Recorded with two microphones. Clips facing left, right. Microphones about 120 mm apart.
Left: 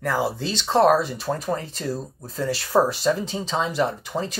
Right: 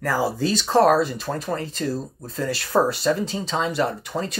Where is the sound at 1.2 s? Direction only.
5° left (ahead or behind).